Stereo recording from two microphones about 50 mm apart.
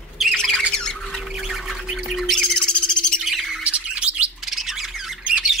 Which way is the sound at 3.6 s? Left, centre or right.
Right.